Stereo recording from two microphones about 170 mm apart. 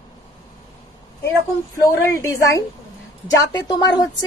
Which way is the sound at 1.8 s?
20° left (ahead or behind).